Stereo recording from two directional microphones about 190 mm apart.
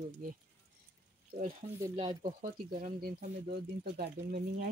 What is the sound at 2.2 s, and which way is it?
Speech, 40° right (ahead or behind).